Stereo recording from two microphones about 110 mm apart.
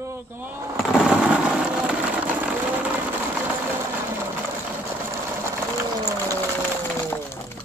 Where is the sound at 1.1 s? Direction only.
10° right (ahead or behind).